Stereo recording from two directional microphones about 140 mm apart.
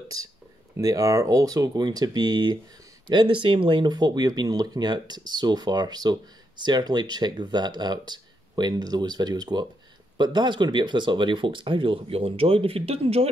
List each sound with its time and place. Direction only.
0.7 s speech: 25° right (ahead or behind); by 13.3 s 45° right (ahead or behind)